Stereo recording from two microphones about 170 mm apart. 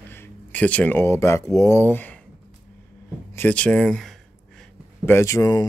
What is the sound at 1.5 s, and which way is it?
Speech, 15° left (ahead or behind).